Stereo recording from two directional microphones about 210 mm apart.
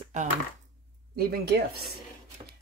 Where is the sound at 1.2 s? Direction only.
50° right (ahead or behind).